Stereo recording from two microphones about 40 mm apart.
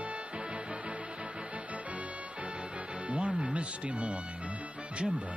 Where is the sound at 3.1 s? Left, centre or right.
Right.